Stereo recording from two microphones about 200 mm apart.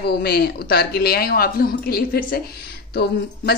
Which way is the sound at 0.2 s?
50° left (ahead or behind).